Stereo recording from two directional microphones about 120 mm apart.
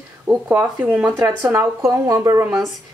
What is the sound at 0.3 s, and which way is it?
A woman's voice, 15° right (ahead or behind).